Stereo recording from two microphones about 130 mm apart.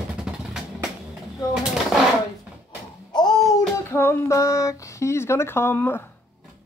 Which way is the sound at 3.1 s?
35° left (ahead or behind).